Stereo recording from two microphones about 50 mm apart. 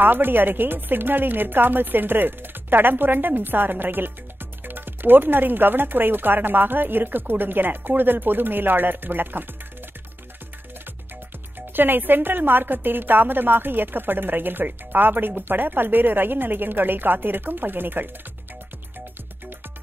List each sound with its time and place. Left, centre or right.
0.0 s speech: right
11.7 s a woman's voice: right